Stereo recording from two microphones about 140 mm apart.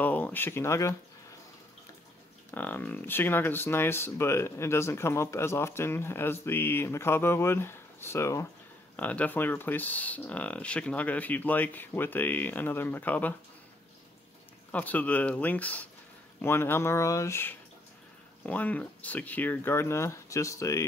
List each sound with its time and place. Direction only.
0.0 s speech: 10° left (ahead or behind)
2.5 s speech: 10° left (ahead or behind)
14.7 s speech: 10° left (ahead or behind)